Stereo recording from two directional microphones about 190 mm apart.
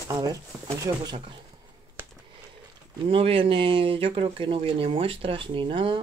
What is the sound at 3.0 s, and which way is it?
Speech, 30° right (ahead or behind).